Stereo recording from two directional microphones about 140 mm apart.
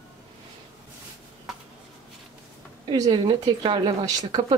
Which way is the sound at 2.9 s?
30° right (ahead or behind).